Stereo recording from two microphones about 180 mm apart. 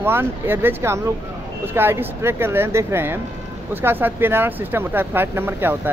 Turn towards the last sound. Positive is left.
turn(degrees=-10)  # may be behind; listen again after turning